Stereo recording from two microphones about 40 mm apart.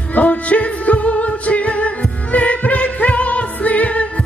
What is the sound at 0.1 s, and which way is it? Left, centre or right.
Music, left.